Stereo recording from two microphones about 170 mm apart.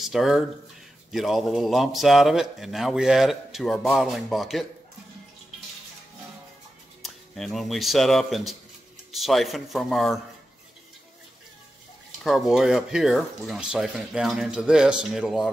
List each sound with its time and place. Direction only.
0.0 s a man's voice: centre (ahead or behind)
7.0 s a man's voice: centre (ahead or behind)
12.2 s a man's voice: centre (ahead or behind)